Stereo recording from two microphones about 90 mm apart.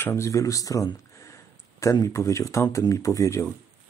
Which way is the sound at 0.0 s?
30° left (ahead or behind).